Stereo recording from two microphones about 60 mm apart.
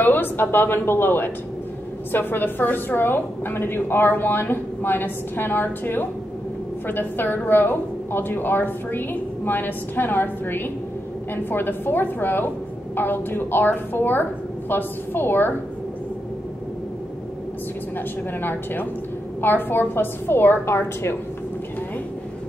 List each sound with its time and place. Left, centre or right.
0.0 s a woman's voice: left
18.4 s a woman's voice: left